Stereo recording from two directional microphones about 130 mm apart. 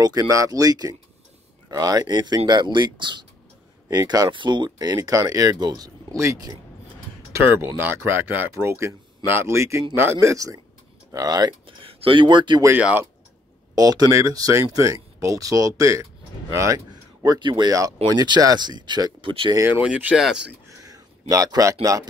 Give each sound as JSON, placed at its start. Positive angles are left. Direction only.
{"t": 0.0, "sound": "speech", "side_deg": -30}
{"t": 11.8, "sound": "speech", "side_deg": -45}
{"t": 12.8, "sound": "speech", "side_deg": -15}
{"t": 13.7, "sound": "speech", "side_deg": -30}
{"t": 19.8, "sound": "speech", "side_deg": -10}
{"t": 20.8, "sound": "a sound", "side_deg": -25}